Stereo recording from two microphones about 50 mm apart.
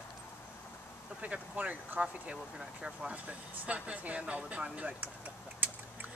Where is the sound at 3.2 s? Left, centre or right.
Right.